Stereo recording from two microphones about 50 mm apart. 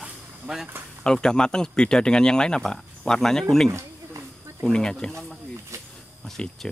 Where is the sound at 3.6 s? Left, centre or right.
Right.